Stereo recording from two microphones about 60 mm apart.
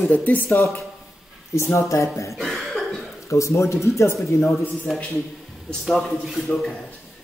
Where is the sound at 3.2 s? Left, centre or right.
Left.